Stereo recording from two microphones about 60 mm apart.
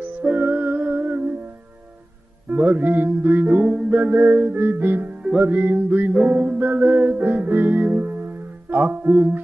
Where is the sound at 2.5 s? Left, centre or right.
Right.